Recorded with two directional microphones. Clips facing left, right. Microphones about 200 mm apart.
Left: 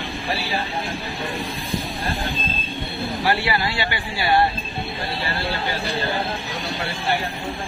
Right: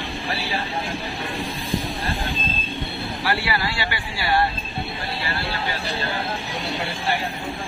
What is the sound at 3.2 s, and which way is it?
Speech, 20° left (ahead or behind).